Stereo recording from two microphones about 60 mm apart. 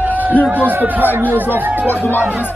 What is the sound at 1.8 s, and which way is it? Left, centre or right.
Speech, left.